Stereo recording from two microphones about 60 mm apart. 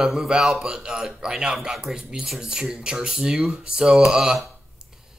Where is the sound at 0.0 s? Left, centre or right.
Centre.